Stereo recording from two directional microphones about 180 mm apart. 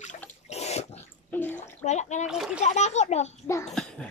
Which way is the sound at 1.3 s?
10° left (ahead or behind).